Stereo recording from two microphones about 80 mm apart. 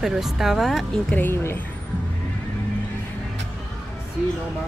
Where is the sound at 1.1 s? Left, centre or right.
Left.